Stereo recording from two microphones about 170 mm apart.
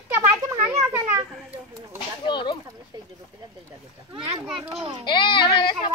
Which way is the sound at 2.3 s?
30° left (ahead or behind).